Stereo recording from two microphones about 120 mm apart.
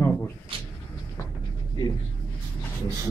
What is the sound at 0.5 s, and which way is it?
Speech, 45° right (ahead or behind).